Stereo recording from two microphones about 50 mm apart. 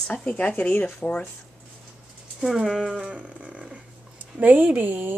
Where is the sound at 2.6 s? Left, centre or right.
Centre.